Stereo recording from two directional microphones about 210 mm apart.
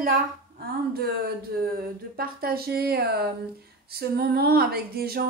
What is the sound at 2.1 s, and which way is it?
Speech, 45° right (ahead or behind).